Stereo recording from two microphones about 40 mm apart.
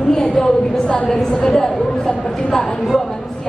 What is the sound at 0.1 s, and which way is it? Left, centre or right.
A woman's voice, centre.